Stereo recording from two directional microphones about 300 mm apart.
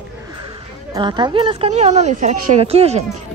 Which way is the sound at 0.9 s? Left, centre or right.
Centre.